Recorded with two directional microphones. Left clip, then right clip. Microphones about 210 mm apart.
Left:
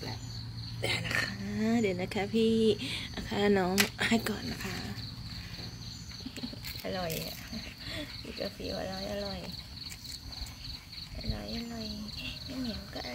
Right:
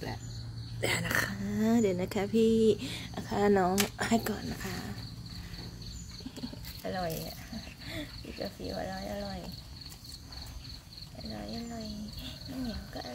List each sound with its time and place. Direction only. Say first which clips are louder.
0.8 s speech: right 1 dB; 25° right (ahead or behind)
1.3 s speech: right 2 dB; 15° right (ahead or behind)
6.8 s speech: right 1 dB; 5° left (ahead or behind)
12.2 s speech: left 2 dB; centre (ahead or behind)